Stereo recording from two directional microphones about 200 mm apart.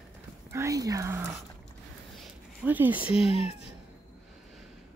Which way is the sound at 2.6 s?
10° right (ahead or behind).